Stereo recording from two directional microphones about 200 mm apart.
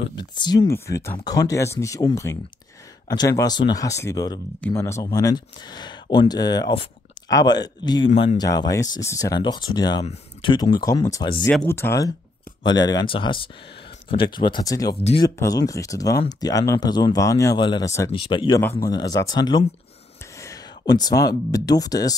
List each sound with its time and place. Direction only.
0.0 s speech: 20° left (ahead or behind)
8.1 s speech: 35° left (ahead or behind)
8.4 s speech: 20° left (ahead or behind)
11.4 s speech: 10° left (ahead or behind)
20.3 s a sound: 15° left (ahead or behind)
21.3 s speech: 20° left (ahead or behind)